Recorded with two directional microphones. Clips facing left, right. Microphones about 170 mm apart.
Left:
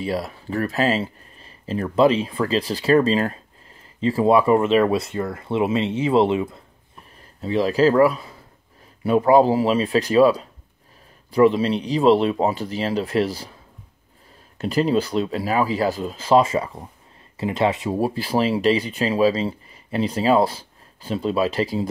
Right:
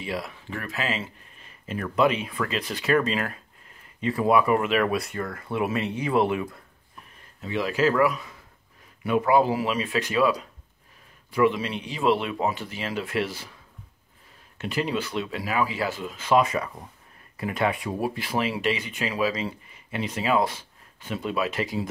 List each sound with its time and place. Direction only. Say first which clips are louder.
0.0 s speech: left 6 dB; 40° left (ahead or behind)
7.4 s speech: left 6 dB; 35° left (ahead or behind)
14.6 s speech: left 8 dB; 35° left (ahead or behind)